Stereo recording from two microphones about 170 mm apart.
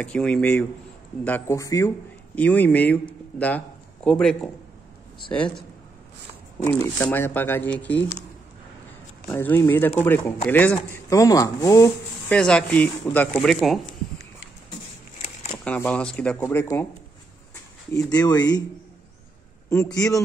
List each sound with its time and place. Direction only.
0.0 s a man's voice: 5° left (ahead or behind)
6.6 s speech: 10° left (ahead or behind)
9.3 s speech: 10° left (ahead or behind)
12.4 s speech: 5° left (ahead or behind)
15.6 s speech: 5° left (ahead or behind)
17.9 s speech: 25° left (ahead or behind)
19.8 s speech: 20° left (ahead or behind)